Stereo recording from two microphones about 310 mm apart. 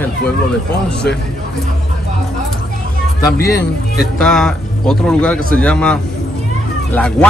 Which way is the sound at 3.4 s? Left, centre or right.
Left.